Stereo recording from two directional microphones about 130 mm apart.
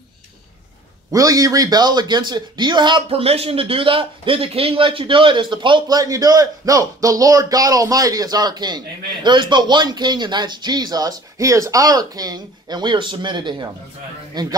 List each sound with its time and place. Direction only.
1.1 s speech: 25° right (ahead or behind)